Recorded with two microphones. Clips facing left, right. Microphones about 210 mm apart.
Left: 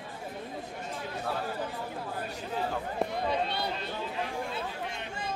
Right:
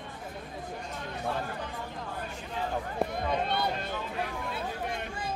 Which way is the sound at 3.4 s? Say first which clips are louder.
Right 3 dB; 50° right (ahead or behind).